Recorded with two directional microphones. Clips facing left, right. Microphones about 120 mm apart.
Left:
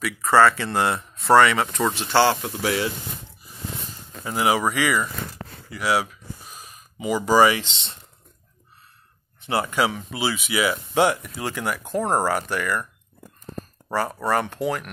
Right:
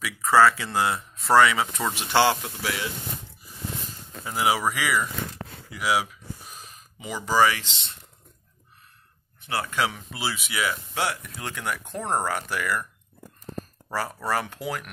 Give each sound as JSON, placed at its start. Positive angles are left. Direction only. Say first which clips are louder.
{"t": 0.0, "sound": "speech", "louder": "left 2 dB", "side_deg": 0}
{"t": 2.0, "sound": "speech", "louder": "left 1 dB", "side_deg": -15}
{"t": 2.4, "sound": "speech", "louder": "left 7 dB", "side_deg": 30}
{"t": 4.2, "sound": "speech", "louder": "left 3 dB", "side_deg": 0}
{"t": 7.0, "sound": "speech", "louder": "left 5 dB", "side_deg": 10}
{"t": 9.5, "sound": "speech", "louder": "left 5 dB", "side_deg": 20}
{"t": 9.8, "sound": "speech", "louder": "left 4 dB", "side_deg": 5}
{"t": 12.0, "sound": "speech", "louder": "left 5 dB", "side_deg": 35}
{"t": 12.3, "sound": "speech", "louder": "left 4 dB", "side_deg": 0}
{"t": 14.0, "sound": "speech", "louder": "left 5 dB", "side_deg": 25}
{"t": 14.3, "sound": "speech", "louder": "left 5 dB", "side_deg": -5}